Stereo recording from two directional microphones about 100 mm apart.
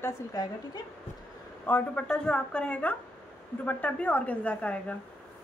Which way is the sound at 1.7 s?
20° left (ahead or behind).